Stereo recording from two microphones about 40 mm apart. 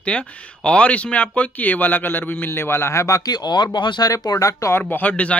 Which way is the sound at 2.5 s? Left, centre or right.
Left.